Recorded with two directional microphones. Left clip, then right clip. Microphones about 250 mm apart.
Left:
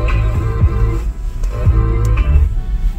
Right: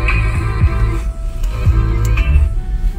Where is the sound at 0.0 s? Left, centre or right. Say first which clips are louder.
Right 4 dB; right.